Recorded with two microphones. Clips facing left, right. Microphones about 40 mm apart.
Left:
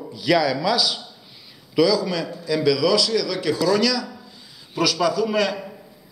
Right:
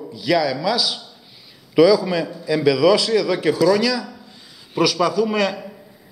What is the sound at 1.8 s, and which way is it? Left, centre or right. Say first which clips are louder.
A man's voice: right 5 dB; centre.